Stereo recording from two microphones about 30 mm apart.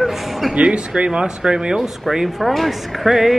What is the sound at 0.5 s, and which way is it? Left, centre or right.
Speech, right.